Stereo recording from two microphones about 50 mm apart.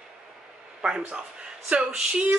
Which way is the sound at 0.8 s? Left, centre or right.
Centre.